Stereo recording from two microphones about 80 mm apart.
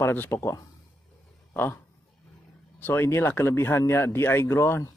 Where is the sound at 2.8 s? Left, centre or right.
Left.